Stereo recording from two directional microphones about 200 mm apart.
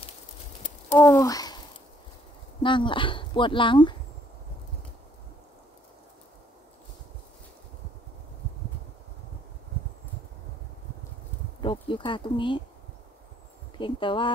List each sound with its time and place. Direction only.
0.9 s speech: 15° left (ahead or behind)
2.6 s speech: 25° left (ahead or behind)
11.6 s insect: 25° left (ahead or behind)
13.7 s speech: 25° left (ahead or behind)